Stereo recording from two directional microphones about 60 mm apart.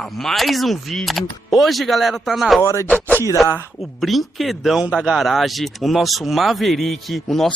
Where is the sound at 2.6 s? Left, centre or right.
Left.